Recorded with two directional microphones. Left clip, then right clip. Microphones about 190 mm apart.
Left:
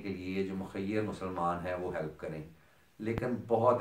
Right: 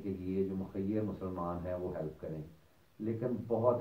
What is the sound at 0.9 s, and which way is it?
Speech, 15° left (ahead or behind).